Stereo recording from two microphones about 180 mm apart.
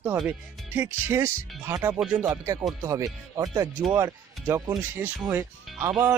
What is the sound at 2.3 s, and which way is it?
Speech, 15° right (ahead or behind).